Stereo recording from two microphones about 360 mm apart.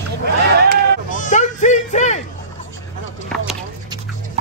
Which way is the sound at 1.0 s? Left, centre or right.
Left.